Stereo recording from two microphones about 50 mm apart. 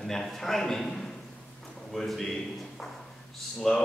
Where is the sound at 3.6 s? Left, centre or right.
Centre.